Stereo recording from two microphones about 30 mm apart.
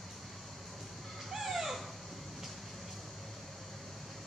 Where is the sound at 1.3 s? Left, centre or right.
Centre.